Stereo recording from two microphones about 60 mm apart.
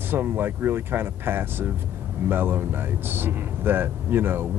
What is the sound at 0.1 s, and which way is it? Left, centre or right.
Speech, right.